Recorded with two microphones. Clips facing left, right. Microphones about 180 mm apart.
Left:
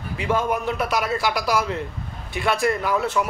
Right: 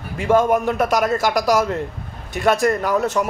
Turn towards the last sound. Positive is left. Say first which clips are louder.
# right 3 dB
turn(degrees=-45)  # may be behind; listen again after turning